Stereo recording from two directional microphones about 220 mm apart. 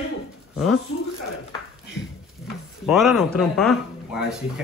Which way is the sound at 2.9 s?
Centre (ahead or behind).